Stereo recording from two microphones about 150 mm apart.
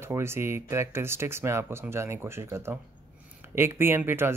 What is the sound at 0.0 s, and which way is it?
Speech, 15° right (ahead or behind).